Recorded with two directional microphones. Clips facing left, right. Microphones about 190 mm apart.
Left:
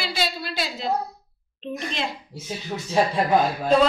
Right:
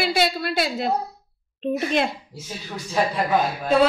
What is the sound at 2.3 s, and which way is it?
Speech, 25° left (ahead or behind).